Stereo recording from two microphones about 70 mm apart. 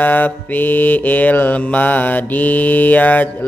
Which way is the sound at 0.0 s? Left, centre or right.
Left.